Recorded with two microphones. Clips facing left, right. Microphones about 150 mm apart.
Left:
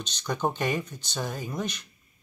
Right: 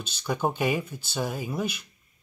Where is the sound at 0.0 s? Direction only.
5° right (ahead or behind).